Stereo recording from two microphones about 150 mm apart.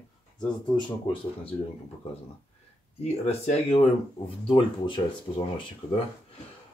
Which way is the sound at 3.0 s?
45° left (ahead or behind).